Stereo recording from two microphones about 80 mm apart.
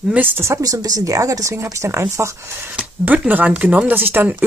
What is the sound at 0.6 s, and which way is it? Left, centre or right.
Speech, right.